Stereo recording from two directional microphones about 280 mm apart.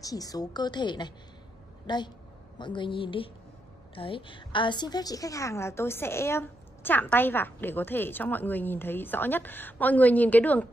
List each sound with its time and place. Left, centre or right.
0.0 s a woman's voice: centre